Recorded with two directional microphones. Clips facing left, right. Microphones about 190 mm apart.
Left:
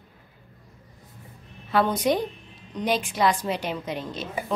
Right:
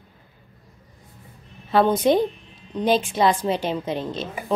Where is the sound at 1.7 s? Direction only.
25° right (ahead or behind).